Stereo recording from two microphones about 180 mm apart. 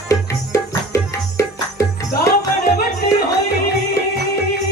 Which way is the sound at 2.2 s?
60° left (ahead or behind).